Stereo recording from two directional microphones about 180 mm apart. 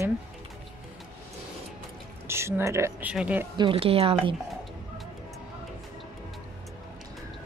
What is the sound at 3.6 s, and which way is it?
Speech, 30° right (ahead or behind).